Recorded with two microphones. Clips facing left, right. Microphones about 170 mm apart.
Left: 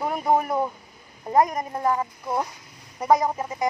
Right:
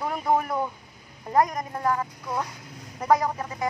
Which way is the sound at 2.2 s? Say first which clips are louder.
Left 3 dB; 30° left (ahead or behind).